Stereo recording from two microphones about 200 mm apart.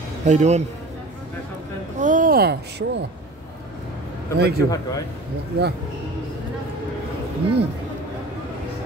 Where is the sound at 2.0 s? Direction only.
40° right (ahead or behind).